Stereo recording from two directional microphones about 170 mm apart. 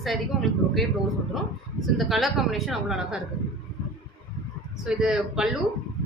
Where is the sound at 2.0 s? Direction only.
Centre (ahead or behind).